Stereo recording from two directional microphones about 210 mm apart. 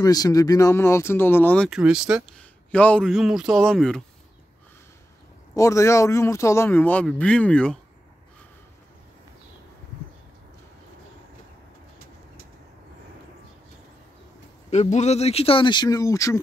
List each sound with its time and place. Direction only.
0.0 s speech: 15° left (ahead or behind)
5.6 s speech: 15° left (ahead or behind)
14.7 s speech: 35° left (ahead or behind); by 16.3 s 15° left (ahead or behind)